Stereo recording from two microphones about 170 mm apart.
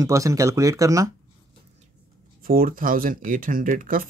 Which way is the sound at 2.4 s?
55° right (ahead or behind).